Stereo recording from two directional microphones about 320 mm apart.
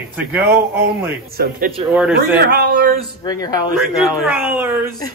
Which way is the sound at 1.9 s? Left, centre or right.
Centre.